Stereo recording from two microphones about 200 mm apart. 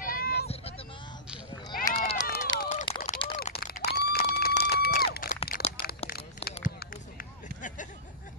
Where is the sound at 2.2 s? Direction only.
50° left (ahead or behind).